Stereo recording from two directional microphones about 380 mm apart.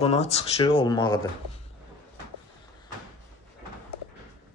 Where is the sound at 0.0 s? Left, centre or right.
Centre.